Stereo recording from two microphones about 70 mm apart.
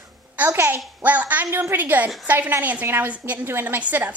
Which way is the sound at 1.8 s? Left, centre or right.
Right.